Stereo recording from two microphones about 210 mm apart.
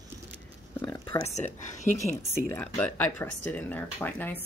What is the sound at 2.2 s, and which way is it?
Speech, 10° left (ahead or behind).